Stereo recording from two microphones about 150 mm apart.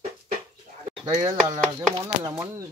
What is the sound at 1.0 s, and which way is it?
Speech, 20° right (ahead or behind).